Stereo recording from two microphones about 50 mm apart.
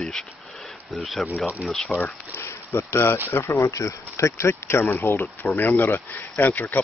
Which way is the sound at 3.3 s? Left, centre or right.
Left.